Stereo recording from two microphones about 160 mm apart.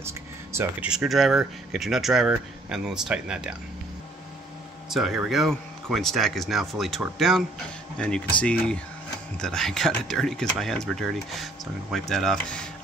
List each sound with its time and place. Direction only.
0.0 s a sound: 15° right (ahead or behind)
0.8 s speech: centre (ahead or behind)
4.8 s speech: centre (ahead or behind)